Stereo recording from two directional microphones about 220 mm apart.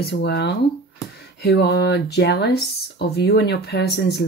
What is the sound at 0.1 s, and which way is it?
Speech, 50° left (ahead or behind).